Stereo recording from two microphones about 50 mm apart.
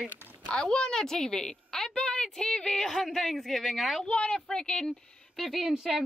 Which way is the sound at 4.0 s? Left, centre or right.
Left.